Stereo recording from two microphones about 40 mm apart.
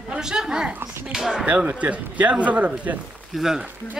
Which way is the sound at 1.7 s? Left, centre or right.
Right.